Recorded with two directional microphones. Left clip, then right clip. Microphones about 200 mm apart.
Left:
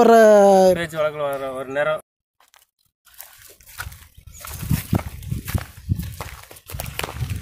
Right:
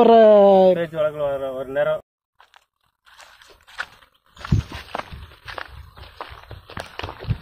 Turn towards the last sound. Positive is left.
turn(degrees=20)  # may be behind; listen again after turning